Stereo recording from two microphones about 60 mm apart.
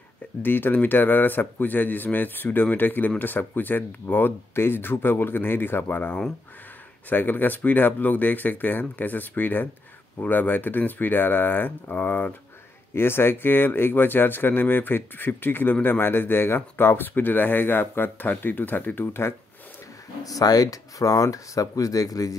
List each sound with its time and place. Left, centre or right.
0.4 s speech: left
20.2 s speech: left